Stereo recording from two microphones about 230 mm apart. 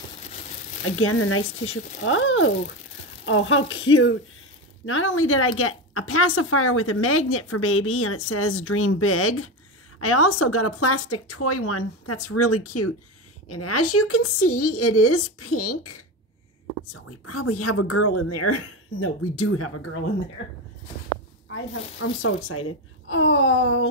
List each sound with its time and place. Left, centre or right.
0.8 s a woman's voice: left
21.5 s speech: left